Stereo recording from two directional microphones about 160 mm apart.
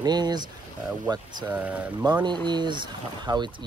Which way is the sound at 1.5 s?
10° right (ahead or behind).